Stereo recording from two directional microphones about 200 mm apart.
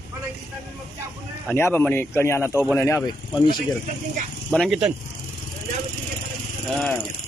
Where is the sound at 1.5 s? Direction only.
10° left (ahead or behind).